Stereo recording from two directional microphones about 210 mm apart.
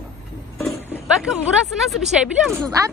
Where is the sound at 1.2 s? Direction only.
Centre (ahead or behind).